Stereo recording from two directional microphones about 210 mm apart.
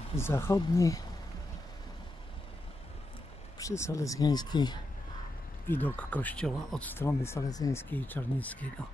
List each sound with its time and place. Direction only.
0.1 s speech: 10° left (ahead or behind)
3.5 s speech: 15° left (ahead or behind)
5.7 s speech: 10° left (ahead or behind)